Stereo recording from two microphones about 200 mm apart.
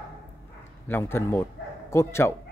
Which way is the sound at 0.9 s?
10° left (ahead or behind).